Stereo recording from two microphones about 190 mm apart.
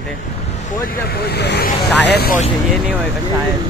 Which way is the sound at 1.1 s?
60° left (ahead or behind).